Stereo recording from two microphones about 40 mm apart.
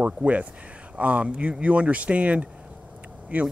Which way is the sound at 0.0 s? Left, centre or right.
Right.